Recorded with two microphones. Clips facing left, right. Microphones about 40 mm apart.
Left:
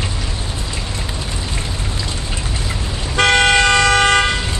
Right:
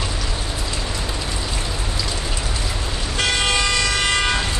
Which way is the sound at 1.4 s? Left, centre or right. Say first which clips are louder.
Left 1 dB; left.